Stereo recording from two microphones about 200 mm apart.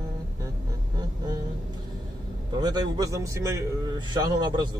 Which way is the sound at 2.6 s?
20° right (ahead or behind).